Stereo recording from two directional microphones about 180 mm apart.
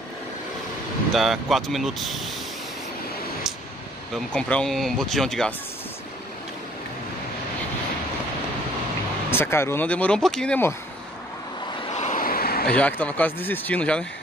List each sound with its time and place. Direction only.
1.1 s speech: centre (ahead or behind)
4.1 s speech: 5° left (ahead or behind)
9.3 s speech: 15° left (ahead or behind)
11.9 s vehicle: 40° left (ahead or behind); by 12.7 s 60° left (ahead or behind)
12.7 s speech: 10° left (ahead or behind)